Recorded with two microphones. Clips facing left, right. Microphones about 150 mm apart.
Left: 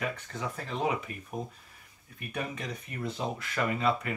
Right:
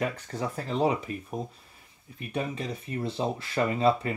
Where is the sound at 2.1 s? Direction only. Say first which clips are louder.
Right 4 dB; 30° right (ahead or behind).